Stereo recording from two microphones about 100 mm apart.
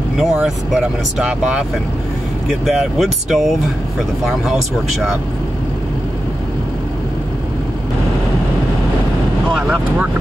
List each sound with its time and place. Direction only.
0.2 s speech: 5° right (ahead or behind)
2.6 s speech: centre (ahead or behind)
9.6 s speech: 15° right (ahead or behind)